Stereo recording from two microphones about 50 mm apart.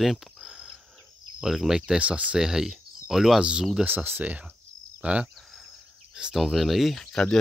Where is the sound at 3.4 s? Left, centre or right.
Right.